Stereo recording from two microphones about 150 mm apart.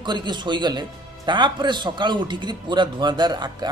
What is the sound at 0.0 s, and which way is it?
A man's voice, 30° right (ahead or behind).